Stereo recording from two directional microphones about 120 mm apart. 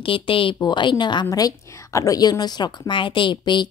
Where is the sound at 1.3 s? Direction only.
30° left (ahead or behind).